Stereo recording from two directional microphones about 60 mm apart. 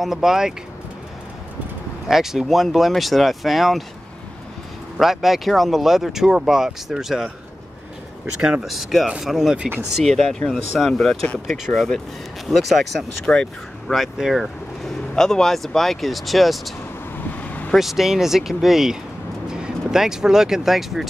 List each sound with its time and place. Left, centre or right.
0.0 s speech: centre
2.0 s speech: centre
4.9 s speech: centre
8.4 s speech: centre
8.6 s speech: centre
10.9 s speech: centre
11.4 s speech: centre
11.7 s speech: centre
13.2 s speech: centre
13.9 s speech: centre
15.1 s speech: centre
17.4 s vehicle: left
17.7 s speech: centre